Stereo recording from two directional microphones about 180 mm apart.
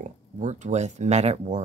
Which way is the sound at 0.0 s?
40° right (ahead or behind).